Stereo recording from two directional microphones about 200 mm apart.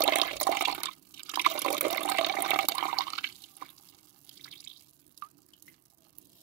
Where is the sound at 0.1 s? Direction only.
10° right (ahead or behind).